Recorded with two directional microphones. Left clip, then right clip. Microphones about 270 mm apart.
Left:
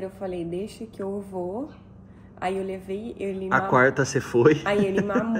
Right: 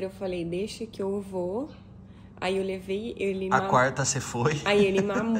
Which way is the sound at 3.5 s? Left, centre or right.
Centre.